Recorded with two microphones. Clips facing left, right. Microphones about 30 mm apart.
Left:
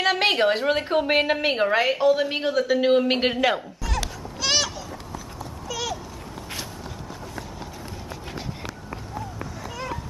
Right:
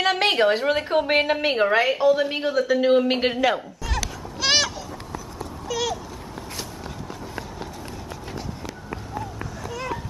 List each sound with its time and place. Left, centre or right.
0.0 s a woman's voice: centre
3.8 s music: centre
5.1 s clip-clop: centre
8.9 s run: centre